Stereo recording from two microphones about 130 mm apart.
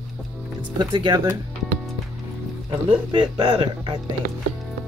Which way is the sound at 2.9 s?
40° right (ahead or behind).